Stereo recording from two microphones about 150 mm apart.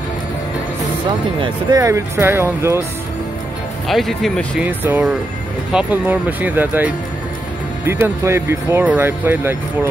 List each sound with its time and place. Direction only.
1.4 s speech: 25° right (ahead or behind)
3.8 s speech: centre (ahead or behind)
4.6 s speech: 10° right (ahead or behind)